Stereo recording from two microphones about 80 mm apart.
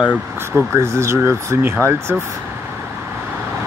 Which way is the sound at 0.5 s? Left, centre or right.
Right.